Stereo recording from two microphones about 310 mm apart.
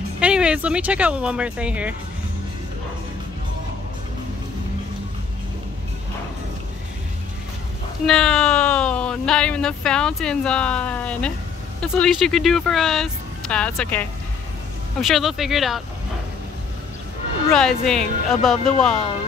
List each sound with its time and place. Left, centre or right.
0.2 s speech: centre
8.1 s speech: centre
17.5 s speech: centre